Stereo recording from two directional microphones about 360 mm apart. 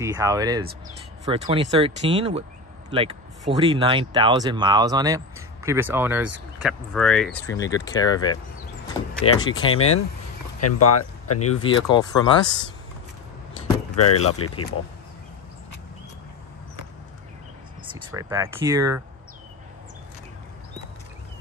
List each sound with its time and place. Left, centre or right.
0.0 s speech: centre
9.7 s speech: left
11.6 s speech: centre
13.9 s speech: left
18.1 s speech: centre